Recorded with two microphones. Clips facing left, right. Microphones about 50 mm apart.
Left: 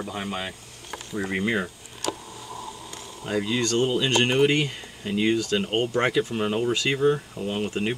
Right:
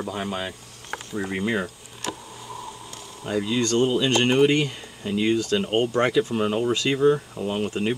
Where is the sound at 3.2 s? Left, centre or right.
Centre.